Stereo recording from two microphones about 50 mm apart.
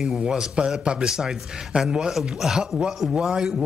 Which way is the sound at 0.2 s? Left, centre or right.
Centre.